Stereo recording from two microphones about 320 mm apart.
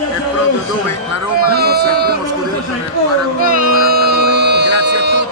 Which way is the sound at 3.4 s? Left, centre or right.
Right.